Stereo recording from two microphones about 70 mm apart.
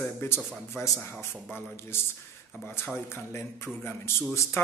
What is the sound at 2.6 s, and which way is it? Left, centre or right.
Speech, left.